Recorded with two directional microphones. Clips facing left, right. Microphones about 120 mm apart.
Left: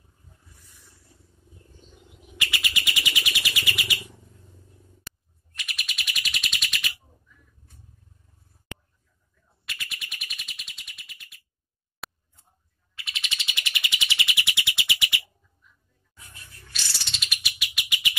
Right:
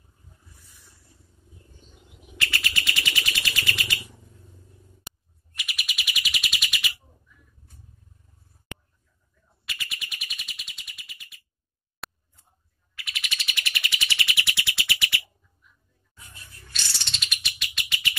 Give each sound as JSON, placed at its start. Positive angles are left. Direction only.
{"t": 2.3, "sound": "bird", "side_deg": 15}
{"t": 5.5, "sound": "bird", "side_deg": -5}
{"t": 9.7, "sound": "bird", "side_deg": 0}
{"t": 12.0, "sound": "scissors", "side_deg": 0}
{"t": 12.9, "sound": "bird", "side_deg": 25}
{"t": 16.7, "sound": "bird", "side_deg": 5}